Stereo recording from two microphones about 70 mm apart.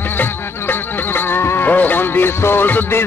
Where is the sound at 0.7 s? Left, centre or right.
Left.